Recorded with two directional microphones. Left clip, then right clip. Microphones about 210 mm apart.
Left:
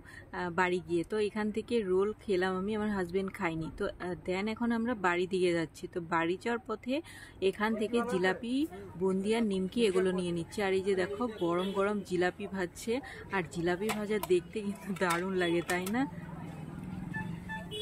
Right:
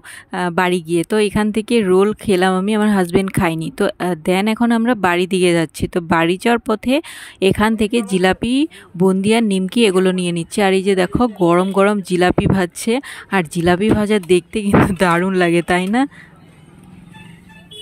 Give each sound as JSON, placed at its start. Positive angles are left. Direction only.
{"t": 0.3, "sound": "speech", "side_deg": -50}